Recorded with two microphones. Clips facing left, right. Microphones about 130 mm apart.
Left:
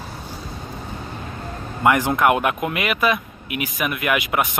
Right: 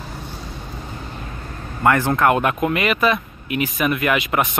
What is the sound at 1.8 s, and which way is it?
Speech, 15° left (ahead or behind).